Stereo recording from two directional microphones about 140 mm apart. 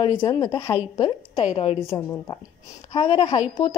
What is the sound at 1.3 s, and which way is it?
Speech, 50° left (ahead or behind).